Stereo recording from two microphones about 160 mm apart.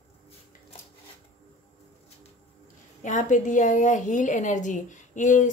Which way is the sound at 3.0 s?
50° left (ahead or behind).